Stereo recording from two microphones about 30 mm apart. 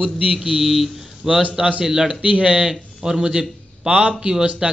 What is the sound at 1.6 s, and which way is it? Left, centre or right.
A man's voice, right.